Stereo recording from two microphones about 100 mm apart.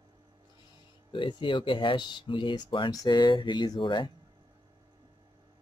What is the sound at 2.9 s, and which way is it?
Speech, 45° left (ahead or behind).